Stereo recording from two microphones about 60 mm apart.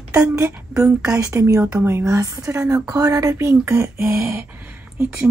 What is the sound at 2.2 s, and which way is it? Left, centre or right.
A woman's voice, right.